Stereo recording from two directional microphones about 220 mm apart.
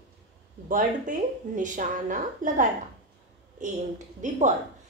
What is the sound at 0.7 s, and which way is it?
A woman's voice, 35° right (ahead or behind).